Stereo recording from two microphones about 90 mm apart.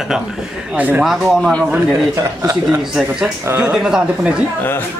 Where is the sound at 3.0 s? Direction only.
10° right (ahead or behind).